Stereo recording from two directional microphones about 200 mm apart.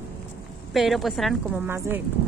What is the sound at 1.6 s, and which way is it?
Speech, 10° right (ahead or behind).